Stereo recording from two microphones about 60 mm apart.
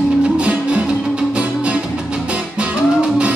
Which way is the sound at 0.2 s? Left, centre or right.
Centre.